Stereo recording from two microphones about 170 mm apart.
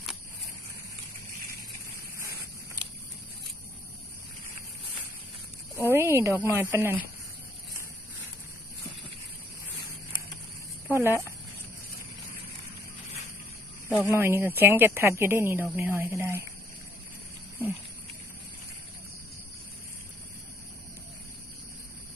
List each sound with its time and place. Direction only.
5.8 s a sound: 15° right (ahead or behind)
6.4 s speech: 15° right (ahead or behind)
10.9 s speech: 15° right (ahead or behind)
13.8 s speech: 15° left (ahead or behind)
14.1 s speech: 15° right (ahead or behind)